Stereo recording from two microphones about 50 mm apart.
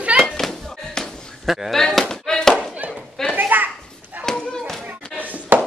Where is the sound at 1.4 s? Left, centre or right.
Centre.